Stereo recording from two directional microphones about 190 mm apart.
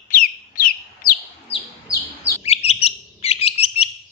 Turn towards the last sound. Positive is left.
turn(degrees=30)  # may be behind; listen again after turning